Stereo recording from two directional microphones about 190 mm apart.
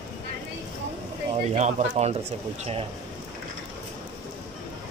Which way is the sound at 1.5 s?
40° right (ahead or behind).